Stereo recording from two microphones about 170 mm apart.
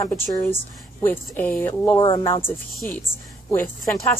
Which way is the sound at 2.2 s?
15° left (ahead or behind).